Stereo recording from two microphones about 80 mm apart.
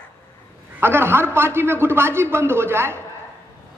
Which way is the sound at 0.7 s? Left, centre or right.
Right.